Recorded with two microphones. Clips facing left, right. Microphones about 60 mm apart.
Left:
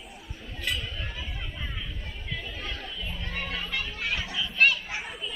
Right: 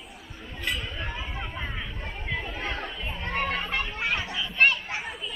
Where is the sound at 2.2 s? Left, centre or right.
Right.